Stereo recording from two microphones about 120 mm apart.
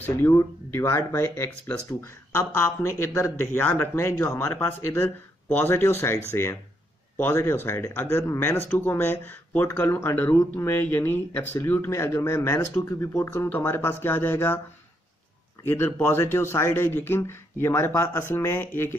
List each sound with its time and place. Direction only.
0.3 s speech: 25° left (ahead or behind)
15.6 s speech: 20° left (ahead or behind)